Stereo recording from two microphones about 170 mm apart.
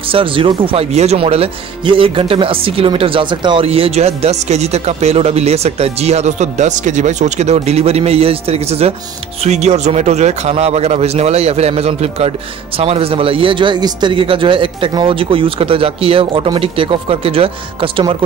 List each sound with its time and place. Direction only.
0.0 s speech: 30° right (ahead or behind)